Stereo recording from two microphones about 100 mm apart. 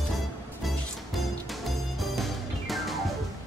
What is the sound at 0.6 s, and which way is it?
Music, centre (ahead or behind).